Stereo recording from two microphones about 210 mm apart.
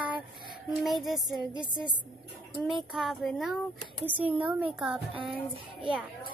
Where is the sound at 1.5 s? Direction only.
20° right (ahead or behind).